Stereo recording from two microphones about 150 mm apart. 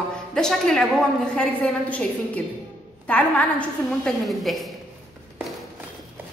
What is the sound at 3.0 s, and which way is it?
A woman's voice, 10° left (ahead or behind).